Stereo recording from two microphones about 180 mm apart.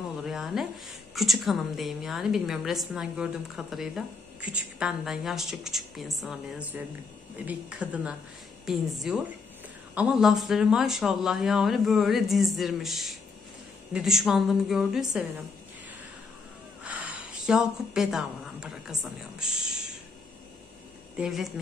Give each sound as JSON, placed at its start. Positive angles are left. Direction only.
{"t": 0.2, "sound": "a sound", "side_deg": 0}
{"t": 1.1, "sound": "a woman's voice", "side_deg": 0}
{"t": 16.8, "sound": "speech", "side_deg": -5}
{"t": 21.2, "sound": "a woman's voice", "side_deg": 0}